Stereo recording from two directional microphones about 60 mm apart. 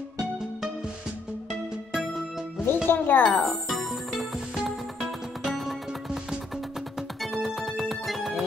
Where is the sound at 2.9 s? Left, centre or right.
Left.